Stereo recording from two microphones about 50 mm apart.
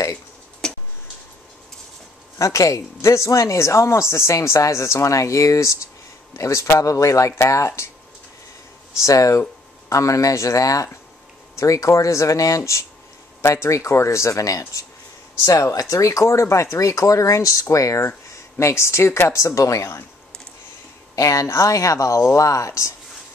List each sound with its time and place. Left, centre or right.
0.6 s tick-tock: centre
2.4 s speech: left
9.0 s speech: left
16.7 s speech: left
18.3 s speech: left
19.3 s speech: left
21.2 s speech: left